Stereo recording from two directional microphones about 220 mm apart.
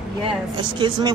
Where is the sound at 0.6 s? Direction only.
20° right (ahead or behind).